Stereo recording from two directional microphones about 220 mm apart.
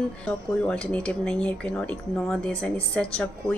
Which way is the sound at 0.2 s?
5° left (ahead or behind).